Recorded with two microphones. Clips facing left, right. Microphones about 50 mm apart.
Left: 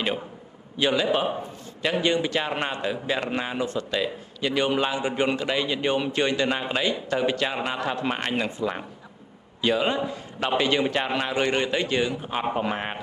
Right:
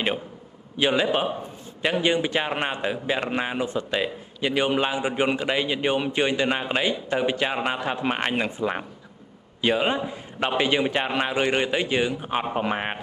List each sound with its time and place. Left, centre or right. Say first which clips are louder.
0.7 s a man's voice: right 1 dB; centre